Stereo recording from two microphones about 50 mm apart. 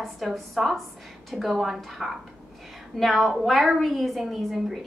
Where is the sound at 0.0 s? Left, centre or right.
Centre.